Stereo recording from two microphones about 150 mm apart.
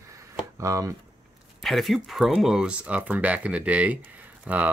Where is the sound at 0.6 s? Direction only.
20° right (ahead or behind).